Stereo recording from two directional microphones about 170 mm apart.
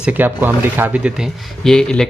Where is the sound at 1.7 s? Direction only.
5° left (ahead or behind).